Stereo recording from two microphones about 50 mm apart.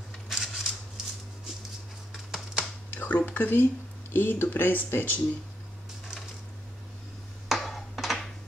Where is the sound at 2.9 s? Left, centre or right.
Left.